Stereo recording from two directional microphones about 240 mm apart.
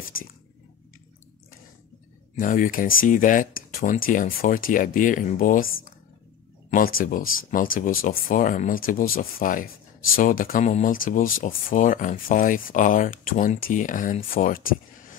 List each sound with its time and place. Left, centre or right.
0.1 s speech: left
2.3 s speech: left
6.7 s speech: left